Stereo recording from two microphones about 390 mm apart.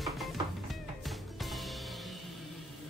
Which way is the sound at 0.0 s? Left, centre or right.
Centre.